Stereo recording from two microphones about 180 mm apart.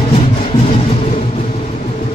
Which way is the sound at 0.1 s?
35° left (ahead or behind).